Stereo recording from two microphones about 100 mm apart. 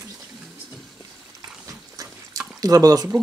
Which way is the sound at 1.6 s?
35° right (ahead or behind).